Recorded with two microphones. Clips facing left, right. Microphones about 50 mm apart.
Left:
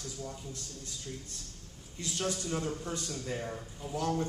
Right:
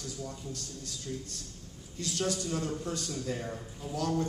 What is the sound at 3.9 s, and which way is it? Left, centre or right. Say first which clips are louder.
Speech: right 1 dB; left.